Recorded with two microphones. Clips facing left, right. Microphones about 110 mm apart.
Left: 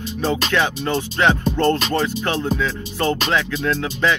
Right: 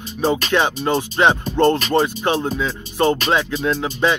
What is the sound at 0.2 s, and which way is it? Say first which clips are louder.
Music: right 2 dB; 20° right (ahead or behind).